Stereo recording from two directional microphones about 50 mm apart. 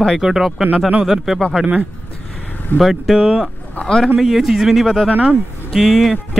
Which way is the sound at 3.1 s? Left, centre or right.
Centre.